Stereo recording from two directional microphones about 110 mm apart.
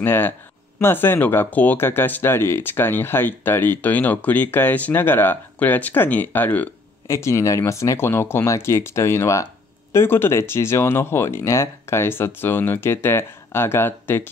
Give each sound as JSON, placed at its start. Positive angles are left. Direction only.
{"t": 0.0, "sound": "speech", "side_deg": 20}
{"t": 7.1, "sound": "speech", "side_deg": 25}